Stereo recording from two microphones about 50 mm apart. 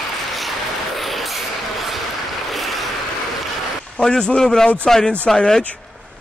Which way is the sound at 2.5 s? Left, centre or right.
Centre.